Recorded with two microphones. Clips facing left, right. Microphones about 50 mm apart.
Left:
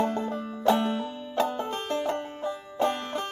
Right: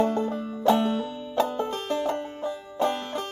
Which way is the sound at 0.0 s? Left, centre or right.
Centre.